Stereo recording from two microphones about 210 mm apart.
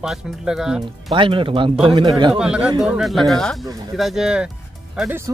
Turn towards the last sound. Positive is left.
turn(degrees=-10)  # may be behind; listen again after turning